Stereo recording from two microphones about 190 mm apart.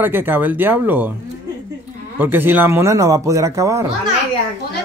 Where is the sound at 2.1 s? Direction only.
10° right (ahead or behind).